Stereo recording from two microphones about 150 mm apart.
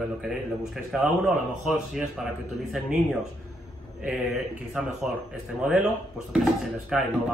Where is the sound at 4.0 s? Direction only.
Centre (ahead or behind).